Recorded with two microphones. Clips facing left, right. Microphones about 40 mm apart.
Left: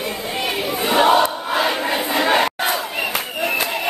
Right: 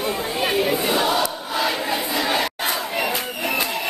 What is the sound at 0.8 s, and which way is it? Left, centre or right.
Crowd, left.